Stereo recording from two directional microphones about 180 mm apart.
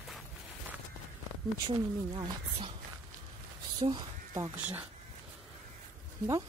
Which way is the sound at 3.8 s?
25° right (ahead or behind).